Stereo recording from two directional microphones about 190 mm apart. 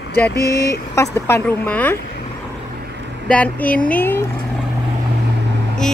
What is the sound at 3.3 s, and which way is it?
Speech, 5° left (ahead or behind).